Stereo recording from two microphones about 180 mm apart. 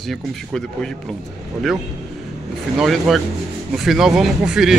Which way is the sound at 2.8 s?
Centre (ahead or behind).